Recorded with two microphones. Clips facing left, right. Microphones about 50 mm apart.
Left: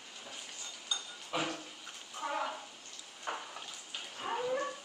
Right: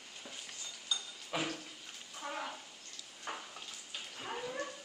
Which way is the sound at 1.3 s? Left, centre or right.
Centre.